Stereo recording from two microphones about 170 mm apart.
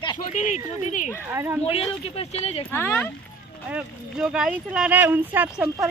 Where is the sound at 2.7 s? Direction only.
10° left (ahead or behind).